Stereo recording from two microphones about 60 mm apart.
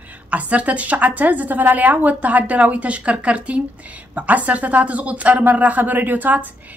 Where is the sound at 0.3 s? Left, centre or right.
Right.